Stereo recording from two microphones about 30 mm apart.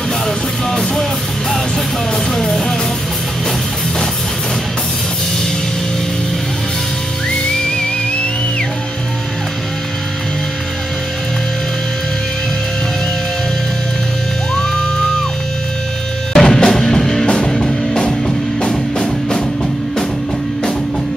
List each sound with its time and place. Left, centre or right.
0.7 s music: centre
2.3 s music: centre
14.5 s music: left
16.3 s music: centre